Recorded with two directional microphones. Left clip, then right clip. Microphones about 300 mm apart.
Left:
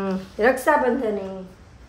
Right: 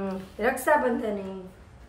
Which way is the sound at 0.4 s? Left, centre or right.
Left.